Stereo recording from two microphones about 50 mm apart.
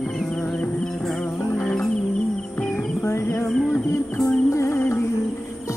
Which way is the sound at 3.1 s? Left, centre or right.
Left.